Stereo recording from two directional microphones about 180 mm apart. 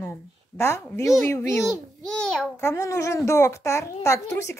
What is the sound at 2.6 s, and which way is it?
A child's voice, 15° left (ahead or behind).